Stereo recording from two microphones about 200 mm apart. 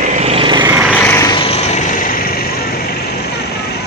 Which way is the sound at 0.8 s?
10° left (ahead or behind).